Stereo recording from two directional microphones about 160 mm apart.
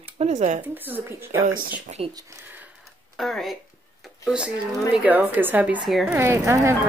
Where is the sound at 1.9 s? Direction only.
45° right (ahead or behind).